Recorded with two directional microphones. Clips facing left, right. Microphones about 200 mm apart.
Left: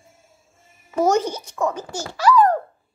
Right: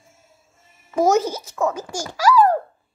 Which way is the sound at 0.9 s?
10° right (ahead or behind).